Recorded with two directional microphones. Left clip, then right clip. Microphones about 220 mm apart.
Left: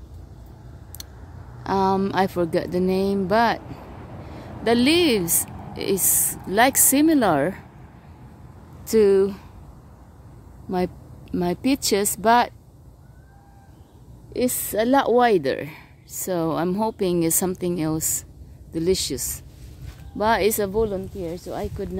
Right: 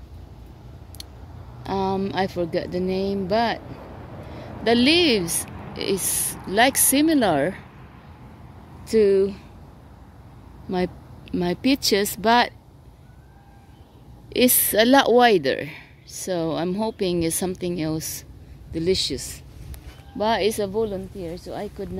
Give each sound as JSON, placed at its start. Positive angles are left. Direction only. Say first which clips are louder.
{"t": 1.6, "sound": "speech", "louder": "left 4 dB", "side_deg": 10}
{"t": 3.7, "sound": "vehicle", "louder": "right 1 dB", "side_deg": 45}
{"t": 4.6, "sound": "speech", "louder": "right 1 dB", "side_deg": 0}
{"t": 8.8, "sound": "speech", "louder": "left 1 dB", "side_deg": 10}
{"t": 10.7, "sound": "speech", "louder": "even", "side_deg": 0}
{"t": 14.3, "sound": "a woman's voice", "louder": "right 4 dB", "side_deg": -20}